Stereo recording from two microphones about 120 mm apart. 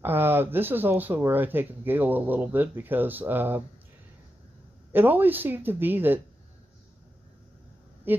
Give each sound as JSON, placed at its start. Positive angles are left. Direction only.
{"t": 0.0, "sound": "speech", "side_deg": -15}
{"t": 4.9, "sound": "speech", "side_deg": -15}
{"t": 8.1, "sound": "speech", "side_deg": -15}